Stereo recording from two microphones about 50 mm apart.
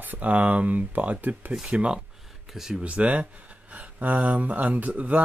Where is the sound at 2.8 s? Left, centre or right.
Right.